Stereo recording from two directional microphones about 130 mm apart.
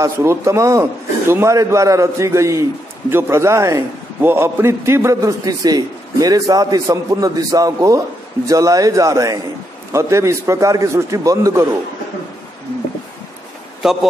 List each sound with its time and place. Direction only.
0.0 s a man's voice: 20° right (ahead or behind)
13.8 s a man's voice: 5° right (ahead or behind)